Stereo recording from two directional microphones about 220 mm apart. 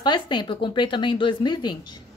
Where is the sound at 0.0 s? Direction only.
20° left (ahead or behind).